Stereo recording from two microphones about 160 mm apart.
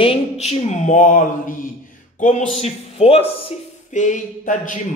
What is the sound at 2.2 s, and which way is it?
A man's voice, 45° left (ahead or behind).